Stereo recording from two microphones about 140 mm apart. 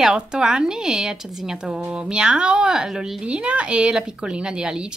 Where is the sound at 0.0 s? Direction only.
5° right (ahead or behind).